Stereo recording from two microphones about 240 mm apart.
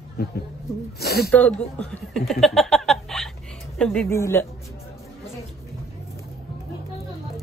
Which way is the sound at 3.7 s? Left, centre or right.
Centre.